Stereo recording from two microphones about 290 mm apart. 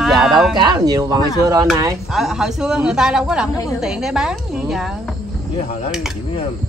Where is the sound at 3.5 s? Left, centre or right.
Centre.